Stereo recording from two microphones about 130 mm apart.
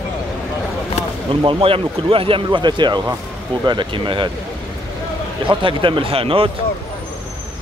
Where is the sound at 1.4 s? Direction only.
45° right (ahead or behind).